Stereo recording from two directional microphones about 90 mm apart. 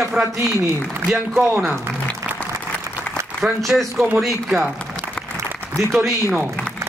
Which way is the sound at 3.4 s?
Centre (ahead or behind).